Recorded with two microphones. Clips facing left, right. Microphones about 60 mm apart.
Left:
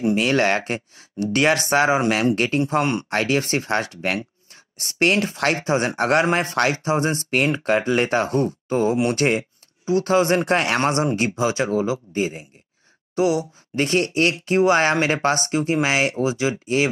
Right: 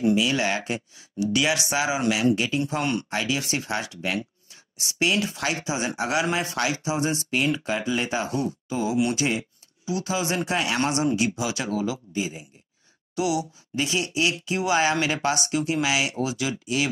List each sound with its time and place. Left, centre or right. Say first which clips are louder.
0.1 s speech: left 4 dB; left
2.7 s speech: left 5 dB; left
3.1 s speech: left 6 dB; left
10.8 s speech: left 3 dB; left
13.8 s speech: left 6 dB; left